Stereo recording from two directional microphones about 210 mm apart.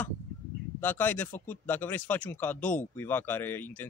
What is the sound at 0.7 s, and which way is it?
Speech, 10° left (ahead or behind).